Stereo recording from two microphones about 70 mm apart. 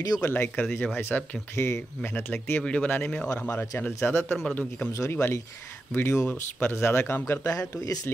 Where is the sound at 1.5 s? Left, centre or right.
Left.